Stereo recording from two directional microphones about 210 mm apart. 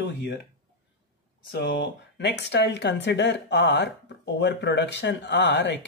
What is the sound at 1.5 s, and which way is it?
Speech, 55° left (ahead or behind).